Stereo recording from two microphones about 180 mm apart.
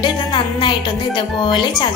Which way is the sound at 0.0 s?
25° left (ahead or behind).